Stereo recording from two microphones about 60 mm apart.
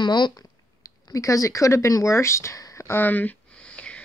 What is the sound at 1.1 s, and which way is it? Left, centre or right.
Speech, left.